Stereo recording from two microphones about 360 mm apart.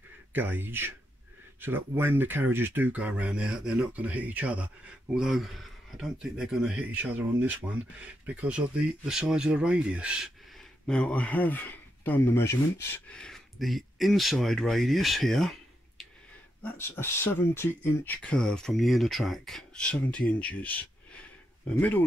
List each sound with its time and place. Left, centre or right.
0.3 s speech: centre
16.6 s speech: centre